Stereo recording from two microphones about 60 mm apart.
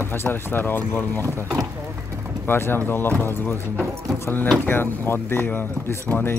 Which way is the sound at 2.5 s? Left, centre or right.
Left.